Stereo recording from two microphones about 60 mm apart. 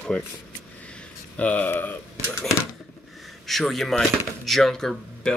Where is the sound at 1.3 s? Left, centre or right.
Left.